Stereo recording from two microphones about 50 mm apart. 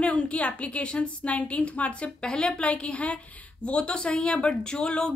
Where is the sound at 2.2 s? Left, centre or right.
Centre.